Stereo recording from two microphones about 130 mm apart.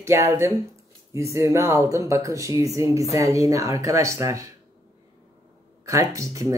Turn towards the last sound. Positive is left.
turn(degrees=-25)  # may be behind; listen again after turning